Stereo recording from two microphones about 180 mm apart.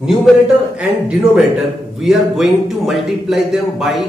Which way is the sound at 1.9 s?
Centre (ahead or behind).